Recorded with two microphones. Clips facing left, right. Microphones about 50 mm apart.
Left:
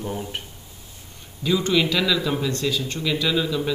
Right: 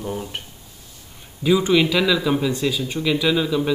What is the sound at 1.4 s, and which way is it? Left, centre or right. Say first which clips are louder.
Speech: right 4 dB; centre.